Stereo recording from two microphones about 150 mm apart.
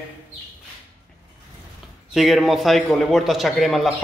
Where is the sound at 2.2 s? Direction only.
Centre (ahead or behind).